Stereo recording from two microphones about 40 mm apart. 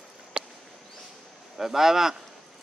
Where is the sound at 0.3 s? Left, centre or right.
Right.